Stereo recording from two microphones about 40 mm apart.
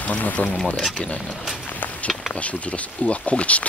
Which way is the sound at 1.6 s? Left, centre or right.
Left.